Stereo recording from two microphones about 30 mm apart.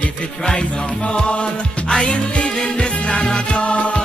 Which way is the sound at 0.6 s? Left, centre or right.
Left.